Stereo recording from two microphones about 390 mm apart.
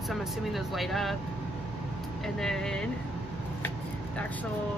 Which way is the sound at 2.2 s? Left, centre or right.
Centre.